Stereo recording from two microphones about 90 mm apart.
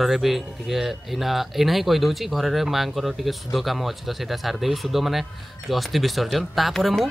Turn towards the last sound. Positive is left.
turn(degrees=0)  # may be behind; listen again after turning